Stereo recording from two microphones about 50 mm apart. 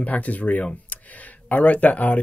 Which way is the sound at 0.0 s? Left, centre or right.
Left.